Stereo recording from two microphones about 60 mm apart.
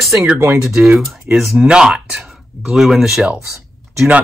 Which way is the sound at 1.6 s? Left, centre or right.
Centre.